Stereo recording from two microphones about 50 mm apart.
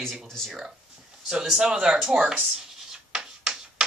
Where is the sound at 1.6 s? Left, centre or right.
Centre.